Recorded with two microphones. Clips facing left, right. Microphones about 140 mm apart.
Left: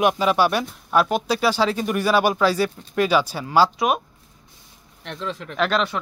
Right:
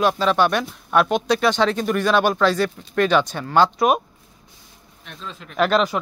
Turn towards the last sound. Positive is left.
turn(degrees=-5)  # may be behind; listen again after turning